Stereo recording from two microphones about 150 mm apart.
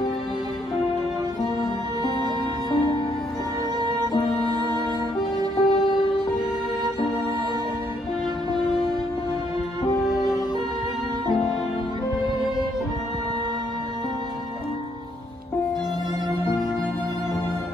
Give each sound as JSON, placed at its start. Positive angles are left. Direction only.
{"t": 5.7, "sound": "music", "side_deg": 35}
{"t": 10.0, "sound": "music", "side_deg": -5}